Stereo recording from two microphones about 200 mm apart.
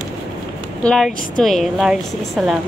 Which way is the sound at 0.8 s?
5° left (ahead or behind).